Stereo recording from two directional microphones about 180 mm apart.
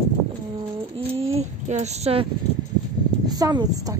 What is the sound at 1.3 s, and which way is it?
Speech, 40° right (ahead or behind).